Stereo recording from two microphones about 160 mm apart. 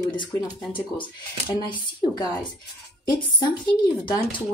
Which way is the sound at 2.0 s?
25° left (ahead or behind).